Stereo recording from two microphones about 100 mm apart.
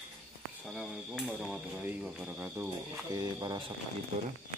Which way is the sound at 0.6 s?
5° right (ahead or behind).